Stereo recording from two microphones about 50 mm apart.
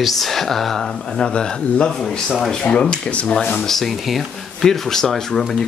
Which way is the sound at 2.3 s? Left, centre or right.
Centre.